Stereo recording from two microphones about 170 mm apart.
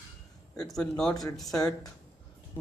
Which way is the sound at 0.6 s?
5° left (ahead or behind).